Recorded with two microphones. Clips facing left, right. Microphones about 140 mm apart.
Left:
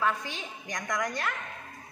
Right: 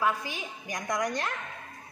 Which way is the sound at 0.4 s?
10° right (ahead or behind).